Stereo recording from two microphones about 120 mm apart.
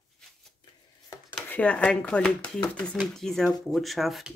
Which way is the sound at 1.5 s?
10° left (ahead or behind).